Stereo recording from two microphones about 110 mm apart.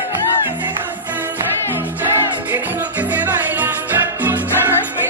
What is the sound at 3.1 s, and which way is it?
Music, 15° right (ahead or behind).